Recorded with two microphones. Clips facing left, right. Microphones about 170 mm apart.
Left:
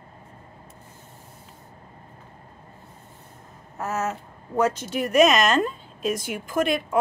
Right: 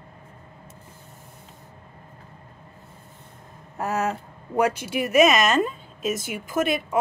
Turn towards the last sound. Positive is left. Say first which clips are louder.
# even
turn(degrees=-5)  # may be behind; listen again after turning